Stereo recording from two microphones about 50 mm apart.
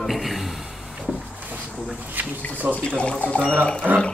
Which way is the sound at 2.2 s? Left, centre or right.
Right.